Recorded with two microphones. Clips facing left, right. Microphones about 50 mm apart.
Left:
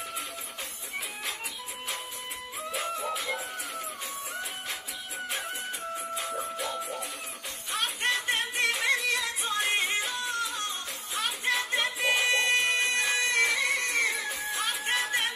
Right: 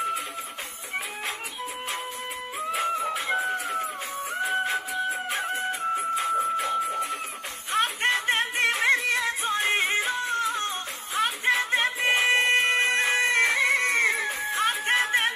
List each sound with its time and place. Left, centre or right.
2.8 s music: right